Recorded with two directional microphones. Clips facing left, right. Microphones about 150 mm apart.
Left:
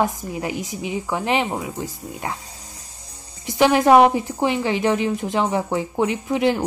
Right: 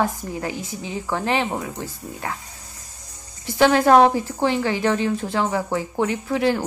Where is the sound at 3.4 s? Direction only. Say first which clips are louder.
Even; 15° left (ahead or behind).